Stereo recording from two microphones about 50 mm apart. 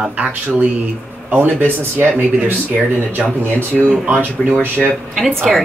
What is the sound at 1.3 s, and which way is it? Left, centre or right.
Speech, right.